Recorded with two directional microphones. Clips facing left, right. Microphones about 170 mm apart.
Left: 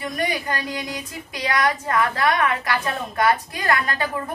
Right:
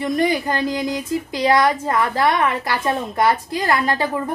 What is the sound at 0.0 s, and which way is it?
Speech, 30° right (ahead or behind).